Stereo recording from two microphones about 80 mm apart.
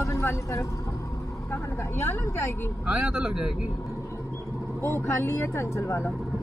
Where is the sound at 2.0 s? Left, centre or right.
Left.